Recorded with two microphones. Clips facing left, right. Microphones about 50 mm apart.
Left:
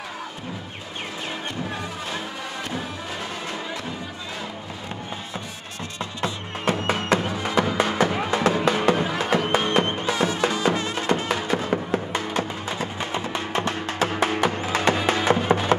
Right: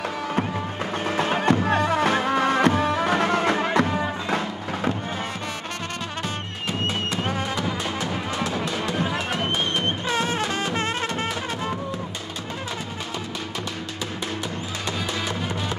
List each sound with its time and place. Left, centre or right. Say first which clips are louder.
1.1 s music: right 11 dB; right
6.2 s music: left 4 dB; left
9.8 s music: left 1 dB; right
13.6 s music: left 7 dB; left